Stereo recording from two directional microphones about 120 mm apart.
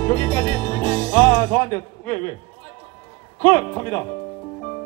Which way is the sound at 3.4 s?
15° left (ahead or behind).